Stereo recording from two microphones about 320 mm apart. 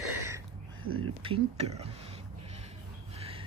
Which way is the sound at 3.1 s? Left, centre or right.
Centre.